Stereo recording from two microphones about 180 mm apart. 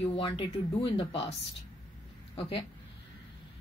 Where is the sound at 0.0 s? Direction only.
30° left (ahead or behind).